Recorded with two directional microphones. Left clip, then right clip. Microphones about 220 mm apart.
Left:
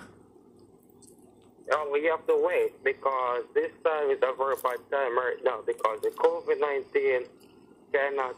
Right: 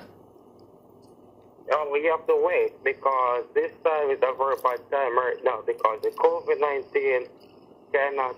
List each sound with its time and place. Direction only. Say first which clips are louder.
1.7 s a man's voice: right 3 dB; 15° left (ahead or behind)